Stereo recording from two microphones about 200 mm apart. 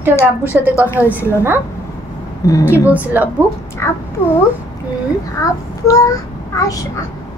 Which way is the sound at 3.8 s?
10° left (ahead or behind).